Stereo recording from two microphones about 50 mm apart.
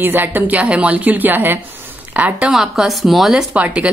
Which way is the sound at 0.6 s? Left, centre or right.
Right.